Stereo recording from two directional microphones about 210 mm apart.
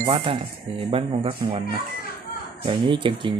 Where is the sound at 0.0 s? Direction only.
25° right (ahead or behind).